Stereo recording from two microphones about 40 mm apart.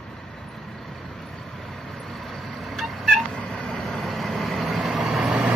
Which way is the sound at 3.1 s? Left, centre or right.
Centre.